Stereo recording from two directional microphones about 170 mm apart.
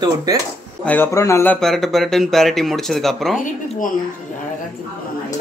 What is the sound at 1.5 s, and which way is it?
Speech, 5° left (ahead or behind).